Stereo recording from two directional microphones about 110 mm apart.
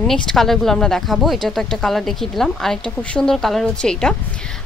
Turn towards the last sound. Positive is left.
turn(degrees=5)  # may be behind; listen again after turning